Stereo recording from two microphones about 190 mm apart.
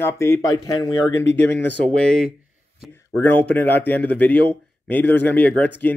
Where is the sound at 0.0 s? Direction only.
15° left (ahead or behind).